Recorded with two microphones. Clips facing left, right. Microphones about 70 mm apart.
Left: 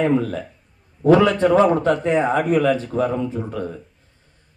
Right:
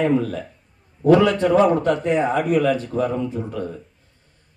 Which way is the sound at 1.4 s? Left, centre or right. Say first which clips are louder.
Left 1 dB; left.